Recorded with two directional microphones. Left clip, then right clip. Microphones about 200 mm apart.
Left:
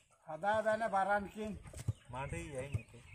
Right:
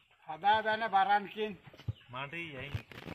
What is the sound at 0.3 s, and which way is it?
A man's voice, 60° left (ahead or behind).